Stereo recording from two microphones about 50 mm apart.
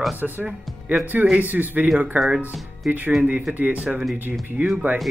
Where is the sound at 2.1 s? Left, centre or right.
Centre.